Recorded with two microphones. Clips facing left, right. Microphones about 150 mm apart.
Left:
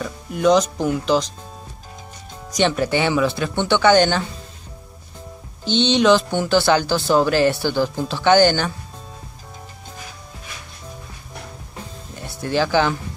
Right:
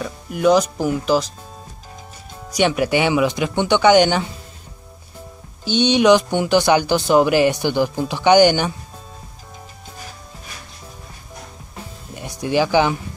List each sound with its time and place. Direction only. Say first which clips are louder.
0.0 s speech: right 1 dB; 5° right (ahead or behind)
2.5 s speech: right 1 dB; 10° right (ahead or behind)
5.7 s speech: right 2 dB; 10° right (ahead or behind)
12.2 s speech: right 2 dB; 15° right (ahead or behind)